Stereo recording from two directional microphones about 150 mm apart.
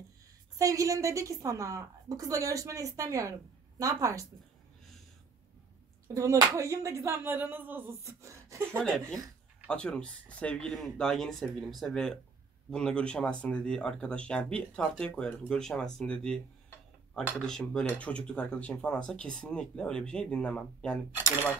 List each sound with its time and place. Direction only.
0.6 s a woman's voice: 20° right (ahead or behind)
6.1 s a woman's voice: 20° right (ahead or behind)
8.7 s speech: 5° left (ahead or behind)